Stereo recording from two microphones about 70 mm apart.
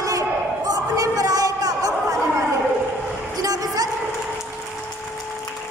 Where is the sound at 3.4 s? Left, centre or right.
Right.